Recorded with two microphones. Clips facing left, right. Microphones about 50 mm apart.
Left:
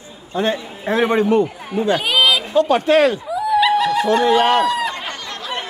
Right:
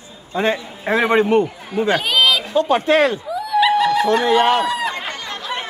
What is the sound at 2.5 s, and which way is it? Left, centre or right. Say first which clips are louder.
Speech: left 3 dB; right.